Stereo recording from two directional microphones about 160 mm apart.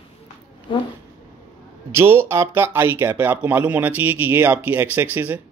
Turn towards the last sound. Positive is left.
turn(degrees=-10)  # may be behind; listen again after turning